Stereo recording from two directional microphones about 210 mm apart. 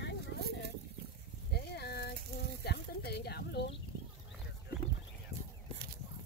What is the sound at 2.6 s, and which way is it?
Speech, 50° left (ahead or behind).